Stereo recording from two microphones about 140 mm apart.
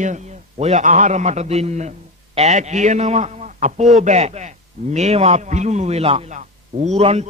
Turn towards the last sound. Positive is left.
turn(degrees=-50)  # may be behind; listen again after turning